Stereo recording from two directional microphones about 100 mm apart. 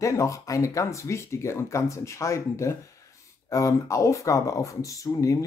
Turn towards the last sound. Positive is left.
turn(degrees=35)  # may be behind; listen again after turning